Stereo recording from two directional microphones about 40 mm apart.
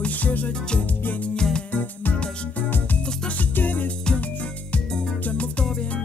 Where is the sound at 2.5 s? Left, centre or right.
Left.